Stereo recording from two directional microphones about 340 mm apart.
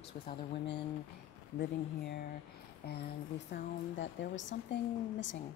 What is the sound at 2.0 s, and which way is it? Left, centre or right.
Speech, left.